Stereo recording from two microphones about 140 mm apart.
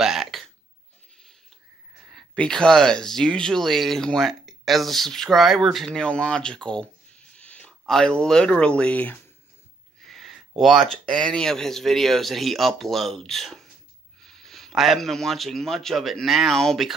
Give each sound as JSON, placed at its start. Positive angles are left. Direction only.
{"t": 0.0, "sound": "hiccup", "side_deg": 0}
{"t": 2.1, "sound": "speech", "side_deg": 5}
{"t": 10.0, "sound": "a sound", "side_deg": 0}
{"t": 10.6, "sound": "a man's voice", "side_deg": 0}